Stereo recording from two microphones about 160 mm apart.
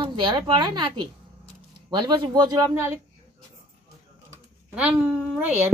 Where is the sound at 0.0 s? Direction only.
30° right (ahead or behind).